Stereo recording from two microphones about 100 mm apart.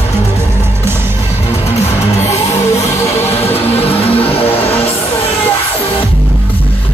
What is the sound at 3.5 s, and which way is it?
Music, 80° left.